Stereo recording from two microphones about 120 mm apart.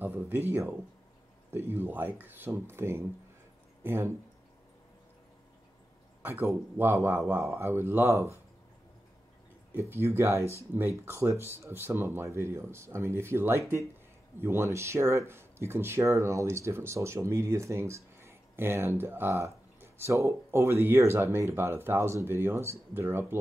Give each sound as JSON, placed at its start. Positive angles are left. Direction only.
{"t": 0.0, "sound": "speech", "side_deg": -15}
{"t": 6.2, "sound": "speech", "side_deg": -15}
{"t": 9.8, "sound": "speech", "side_deg": -20}